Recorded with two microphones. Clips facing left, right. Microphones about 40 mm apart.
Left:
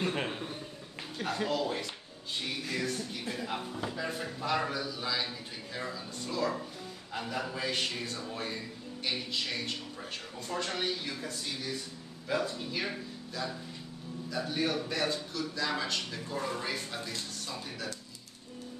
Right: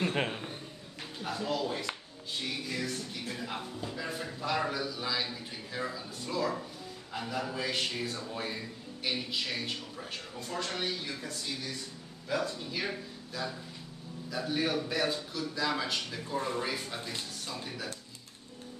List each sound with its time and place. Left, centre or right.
0.0 s a man's voice: centre
1.2 s speech: left
1.5 s speech: centre